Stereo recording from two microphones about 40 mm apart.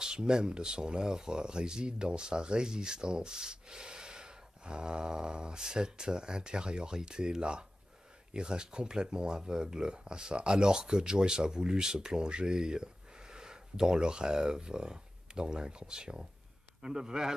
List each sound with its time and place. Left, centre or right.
0.0 s speech: centre